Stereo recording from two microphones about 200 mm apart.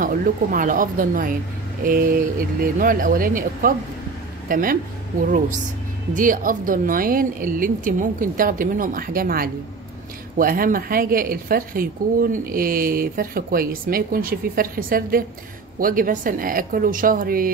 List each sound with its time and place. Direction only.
0.0 s a woman's voice: 40° right (ahead or behind)
6.1 s a woman's voice: 40° right (ahead or behind)